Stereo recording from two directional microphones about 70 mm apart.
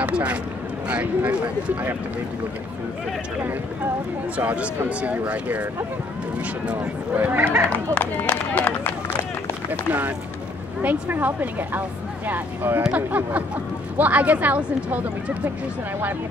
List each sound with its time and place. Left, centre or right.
0.0 s speech: centre
4.4 s speech: right
7.9 s speech: left
9.7 s speech: right